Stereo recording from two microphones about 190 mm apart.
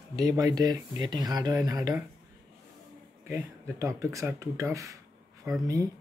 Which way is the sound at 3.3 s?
15° right (ahead or behind).